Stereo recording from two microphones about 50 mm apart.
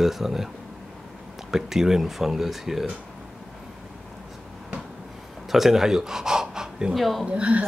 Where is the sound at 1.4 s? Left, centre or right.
Centre.